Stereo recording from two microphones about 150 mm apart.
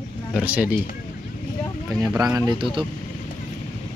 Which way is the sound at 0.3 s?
10° right (ahead or behind).